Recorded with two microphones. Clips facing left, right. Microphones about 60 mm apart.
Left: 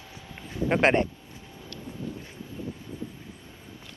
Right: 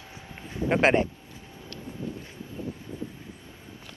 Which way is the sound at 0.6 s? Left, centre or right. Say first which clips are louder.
Even; centre.